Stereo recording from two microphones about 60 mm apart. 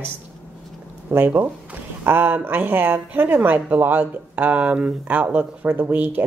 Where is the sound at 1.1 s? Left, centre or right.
Right.